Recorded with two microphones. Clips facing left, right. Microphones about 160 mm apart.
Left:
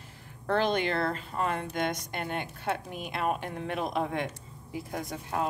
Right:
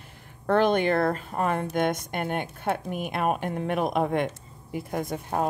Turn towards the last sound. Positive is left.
turn(degrees=-50)  # may be behind; listen again after turning